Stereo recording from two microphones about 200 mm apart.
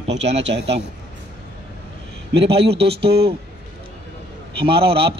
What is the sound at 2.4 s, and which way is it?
Speech, 30° right (ahead or behind).